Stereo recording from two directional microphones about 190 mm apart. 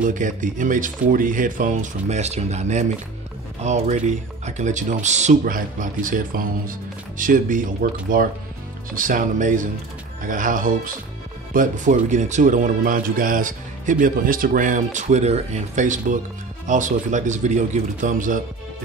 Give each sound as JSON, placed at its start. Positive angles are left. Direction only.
{"t": 0.0, "sound": "speech", "side_deg": -45}